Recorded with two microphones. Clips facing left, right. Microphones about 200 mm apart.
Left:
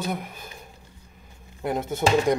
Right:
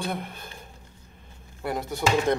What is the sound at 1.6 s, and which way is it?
Speech, 20° left (ahead or behind).